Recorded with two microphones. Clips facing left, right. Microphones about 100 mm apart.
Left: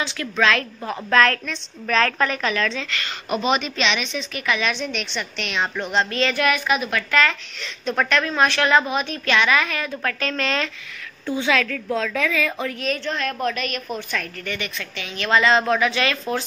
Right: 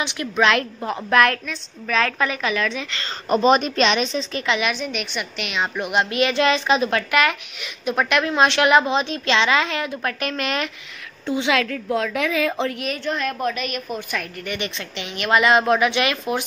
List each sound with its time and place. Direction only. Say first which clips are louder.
0.0 s a woman's voice: right 1 dB; 20° right (ahead or behind)
1.4 s a woman's voice: left 1 dB; 5° right (ahead or behind)
3.0 s a woman's voice: right 8 dB; 35° right (ahead or behind)
4.6 s a woman's voice: right 1 dB; 5° right (ahead or behind); by 7.1 s 30° right (ahead or behind)
7.1 s a woman's voice: right 1 dB; 15° right (ahead or behind)
12.8 s a woman's voice: even; 10° right (ahead or behind)